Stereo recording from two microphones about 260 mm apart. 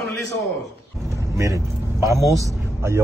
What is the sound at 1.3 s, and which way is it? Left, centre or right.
Speech, centre.